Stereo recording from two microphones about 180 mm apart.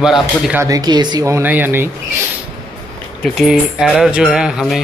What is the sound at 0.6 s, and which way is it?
Speech, 20° right (ahead or behind).